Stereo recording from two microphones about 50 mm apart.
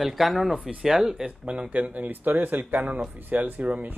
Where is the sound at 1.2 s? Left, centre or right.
Right.